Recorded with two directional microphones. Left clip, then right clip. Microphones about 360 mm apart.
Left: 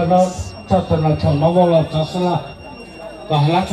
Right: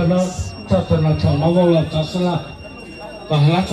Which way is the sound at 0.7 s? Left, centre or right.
Left.